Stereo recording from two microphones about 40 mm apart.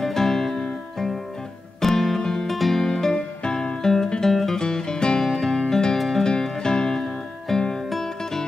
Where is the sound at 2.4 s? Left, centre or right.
Centre.